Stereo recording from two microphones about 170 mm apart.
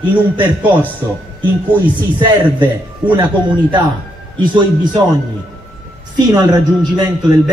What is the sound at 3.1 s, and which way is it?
Speech, 30° right (ahead or behind).